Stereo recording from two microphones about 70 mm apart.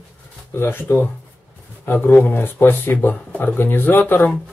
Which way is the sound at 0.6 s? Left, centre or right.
Left.